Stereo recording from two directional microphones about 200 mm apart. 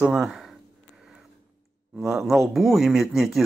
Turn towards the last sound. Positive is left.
turn(degrees=0)  # may be behind; listen again after turning